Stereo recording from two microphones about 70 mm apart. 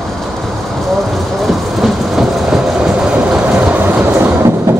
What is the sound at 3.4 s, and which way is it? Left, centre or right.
Train, right.